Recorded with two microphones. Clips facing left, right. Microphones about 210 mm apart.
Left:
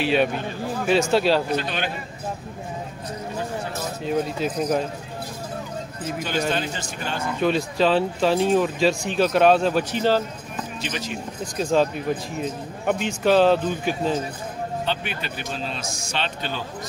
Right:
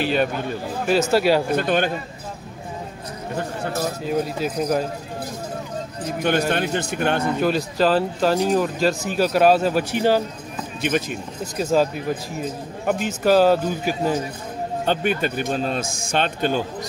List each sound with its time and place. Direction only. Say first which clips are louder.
0.0 s speech: even; centre (ahead or behind)
1.1 s speech: right 3 dB; 10° right (ahead or behind)
1.5 s a man's voice: right 5 dB; 50° right (ahead or behind)
4.0 s speech: left 2 dB; 5° right (ahead or behind)
6.1 s a man's voice: right 4 dB; 60° right (ahead or behind)
7.3 s speech: right 1 dB; centre (ahead or behind)
10.8 s a man's voice: right 10 dB; 55° right (ahead or behind)
11.5 s speech: right 1 dB; 5° right (ahead or behind)
14.9 s a man's voice: right 7 dB; 45° right (ahead or behind)